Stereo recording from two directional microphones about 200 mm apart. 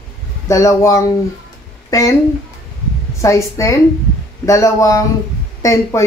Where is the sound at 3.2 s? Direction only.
15° left (ahead or behind).